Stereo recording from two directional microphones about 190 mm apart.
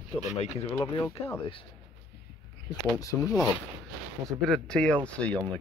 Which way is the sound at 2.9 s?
15° left (ahead or behind).